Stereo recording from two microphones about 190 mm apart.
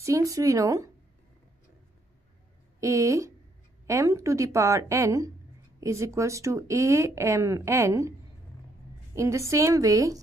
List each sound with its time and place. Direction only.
0.0 s speech: 15° right (ahead or behind)
2.8 s speech: 15° right (ahead or behind)
9.1 s speech: 15° right (ahead or behind)